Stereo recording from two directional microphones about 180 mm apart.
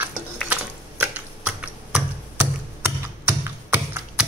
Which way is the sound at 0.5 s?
10° right (ahead or behind).